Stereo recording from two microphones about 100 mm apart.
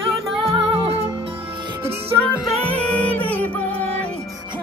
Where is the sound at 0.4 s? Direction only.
70° right (ahead or behind); by 1.1 s 90° right.